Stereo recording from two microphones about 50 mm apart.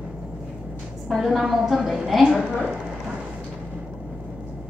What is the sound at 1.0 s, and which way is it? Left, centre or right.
A woman's voice, centre.